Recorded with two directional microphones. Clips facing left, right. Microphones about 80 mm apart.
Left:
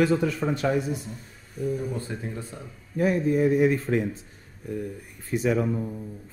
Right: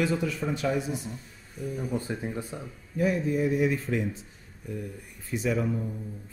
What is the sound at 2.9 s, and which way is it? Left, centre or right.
Speech, left.